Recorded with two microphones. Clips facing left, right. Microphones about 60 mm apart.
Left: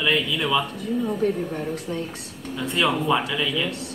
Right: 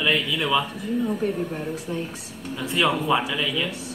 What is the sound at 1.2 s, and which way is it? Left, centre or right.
Speech, left.